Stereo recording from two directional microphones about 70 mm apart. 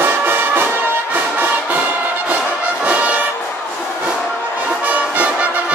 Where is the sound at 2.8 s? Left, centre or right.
Centre.